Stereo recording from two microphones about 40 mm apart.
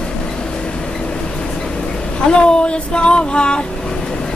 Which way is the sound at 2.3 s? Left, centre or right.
Left.